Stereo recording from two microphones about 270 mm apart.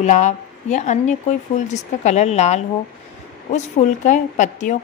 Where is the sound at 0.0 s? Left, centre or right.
Left.